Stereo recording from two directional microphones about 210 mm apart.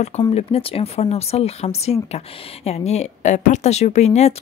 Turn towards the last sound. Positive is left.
turn(degrees=30)  # may be behind; listen again after turning